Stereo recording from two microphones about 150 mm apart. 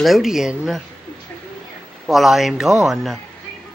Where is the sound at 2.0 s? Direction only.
Centre (ahead or behind).